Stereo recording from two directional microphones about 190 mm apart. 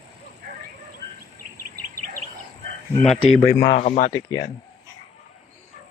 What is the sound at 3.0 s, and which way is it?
Speech, 35° left (ahead or behind).